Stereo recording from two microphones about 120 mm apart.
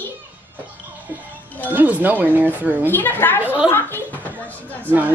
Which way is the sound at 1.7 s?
15° right (ahead or behind).